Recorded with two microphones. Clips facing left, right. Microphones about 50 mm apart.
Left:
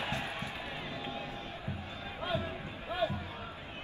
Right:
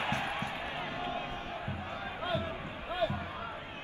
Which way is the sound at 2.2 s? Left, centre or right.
Right.